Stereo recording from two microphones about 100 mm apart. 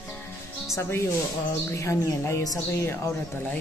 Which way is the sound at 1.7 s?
30° left (ahead or behind).